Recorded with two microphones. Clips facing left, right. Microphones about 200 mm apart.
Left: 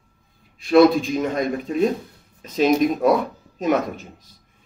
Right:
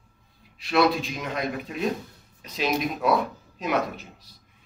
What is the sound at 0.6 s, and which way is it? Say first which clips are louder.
Speech: left 8 dB; 45° left (ahead or behind).